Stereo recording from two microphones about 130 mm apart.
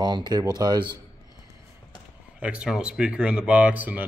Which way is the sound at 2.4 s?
10° right (ahead or behind).